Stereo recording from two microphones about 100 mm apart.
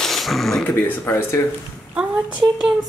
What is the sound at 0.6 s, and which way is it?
Speech, 20° left (ahead or behind).